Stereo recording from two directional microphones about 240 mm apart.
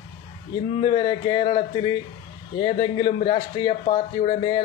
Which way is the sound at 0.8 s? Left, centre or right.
Left.